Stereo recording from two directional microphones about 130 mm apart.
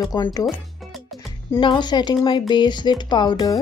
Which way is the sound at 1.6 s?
35° left (ahead or behind).